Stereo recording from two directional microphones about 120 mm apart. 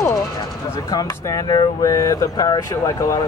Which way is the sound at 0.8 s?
30° left (ahead or behind).